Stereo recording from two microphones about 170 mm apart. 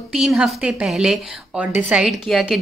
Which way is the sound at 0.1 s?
Centre (ahead or behind).